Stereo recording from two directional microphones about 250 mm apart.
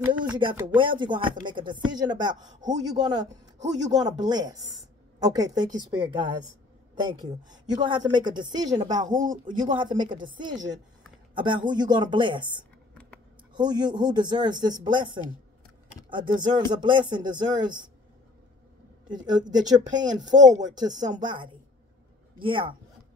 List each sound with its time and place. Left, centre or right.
0.2 s speech: centre
19.0 s speech: centre